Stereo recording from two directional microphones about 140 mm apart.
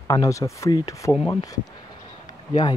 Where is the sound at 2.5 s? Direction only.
30° left (ahead or behind).